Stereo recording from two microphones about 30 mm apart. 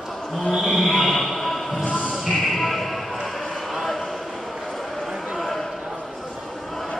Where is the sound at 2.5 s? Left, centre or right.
Centre.